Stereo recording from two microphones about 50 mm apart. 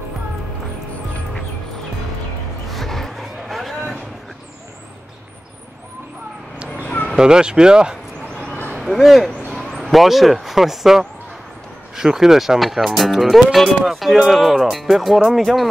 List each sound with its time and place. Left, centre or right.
2.7 s vehicle: centre
6.8 s a sound: left
7.2 s speech: centre
8.7 s speech: centre
9.6 s a sound: centre
9.8 s speech: centre